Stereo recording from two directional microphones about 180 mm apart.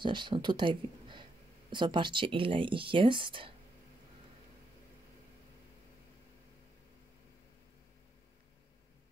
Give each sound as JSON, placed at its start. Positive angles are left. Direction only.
{"t": 0.0, "sound": "speech", "side_deg": -25}